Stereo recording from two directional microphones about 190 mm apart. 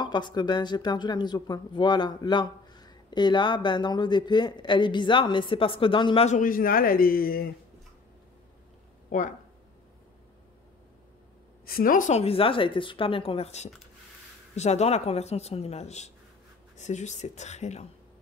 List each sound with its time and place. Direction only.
0.0 s speech: 25° left (ahead or behind); by 7.5 s 50° left (ahead or behind)
9.1 s a woman's voice: 45° left (ahead or behind)
11.6 s a woman's voice: 50° left (ahead or behind)
12.2 s speech: 30° left (ahead or behind)